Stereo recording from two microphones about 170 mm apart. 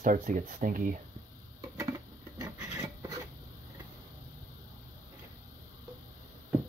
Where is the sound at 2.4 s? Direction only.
20° right (ahead or behind).